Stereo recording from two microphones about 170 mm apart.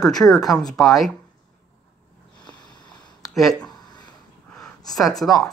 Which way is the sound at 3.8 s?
25° left (ahead or behind).